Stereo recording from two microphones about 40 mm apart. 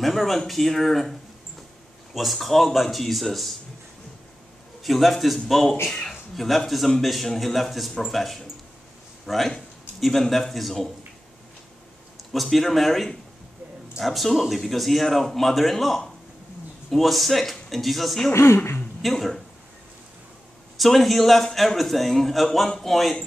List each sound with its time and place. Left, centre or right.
0.0 s speech: centre
2.1 s speech: centre
4.8 s speech: centre
5.9 s speech: centre
6.3 s speech: centre
12.3 s speech: centre
18.4 s speech: left
19.0 s speech: centre
20.7 s speech: centre